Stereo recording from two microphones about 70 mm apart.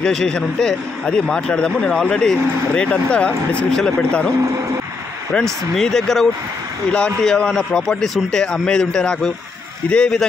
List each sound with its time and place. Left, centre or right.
0.0 s a man's voice: centre
5.3 s a man's voice: centre